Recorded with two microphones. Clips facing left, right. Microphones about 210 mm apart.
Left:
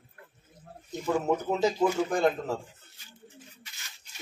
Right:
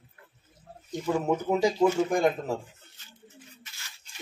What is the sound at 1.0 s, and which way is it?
Speech, 10° right (ahead or behind).